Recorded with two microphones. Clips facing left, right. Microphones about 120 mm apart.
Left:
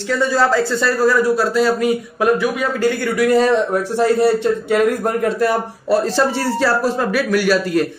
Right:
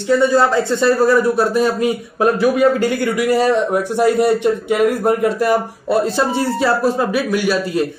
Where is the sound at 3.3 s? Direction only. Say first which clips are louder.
Even; 10° right (ahead or behind).